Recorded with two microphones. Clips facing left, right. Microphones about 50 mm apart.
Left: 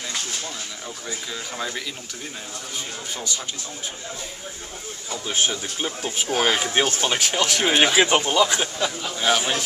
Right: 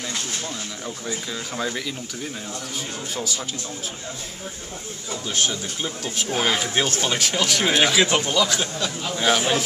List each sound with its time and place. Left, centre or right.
1.0 s speech: centre
5.1 s speech: centre
9.2 s speech: centre